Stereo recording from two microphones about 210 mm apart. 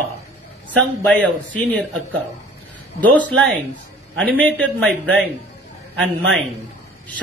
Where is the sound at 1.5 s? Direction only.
60° right (ahead or behind).